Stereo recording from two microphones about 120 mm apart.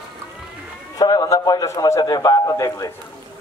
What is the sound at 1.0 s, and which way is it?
A man's voice, 35° left (ahead or behind).